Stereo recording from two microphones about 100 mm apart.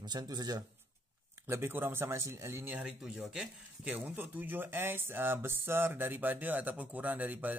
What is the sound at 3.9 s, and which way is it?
Speech, 15° right (ahead or behind).